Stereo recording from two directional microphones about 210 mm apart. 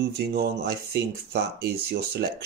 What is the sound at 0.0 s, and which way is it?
Speech, 50° right (ahead or behind).